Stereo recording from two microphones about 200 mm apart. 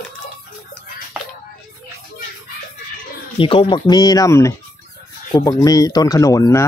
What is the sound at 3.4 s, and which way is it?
Speech, 25° left (ahead or behind).